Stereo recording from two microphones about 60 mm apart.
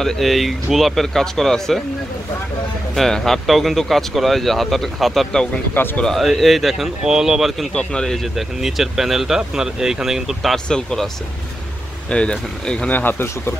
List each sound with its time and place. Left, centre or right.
0.0 s speech: centre
2.9 s speech: centre
7.7 s speech: centre
8.2 s speech: centre
10.5 s speech: centre
12.1 s speech: centre
12.9 s speech: left